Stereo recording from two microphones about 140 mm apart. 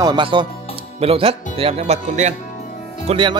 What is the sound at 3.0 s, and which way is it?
Speech, 35° right (ahead or behind).